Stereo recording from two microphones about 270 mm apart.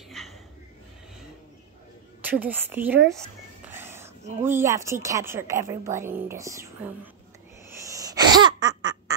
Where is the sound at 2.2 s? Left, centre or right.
Centre.